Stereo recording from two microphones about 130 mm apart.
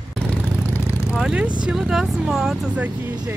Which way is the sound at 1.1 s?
5° right (ahead or behind).